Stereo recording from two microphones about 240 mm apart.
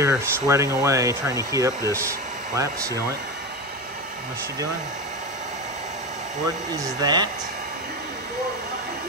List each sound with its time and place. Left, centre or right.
0.0 s speech: centre
6.8 s speech: centre